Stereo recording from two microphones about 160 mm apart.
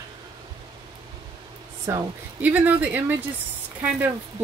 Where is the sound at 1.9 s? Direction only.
15° right (ahead or behind).